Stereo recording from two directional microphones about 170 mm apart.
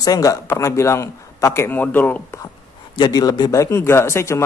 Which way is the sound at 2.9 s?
25° left (ahead or behind).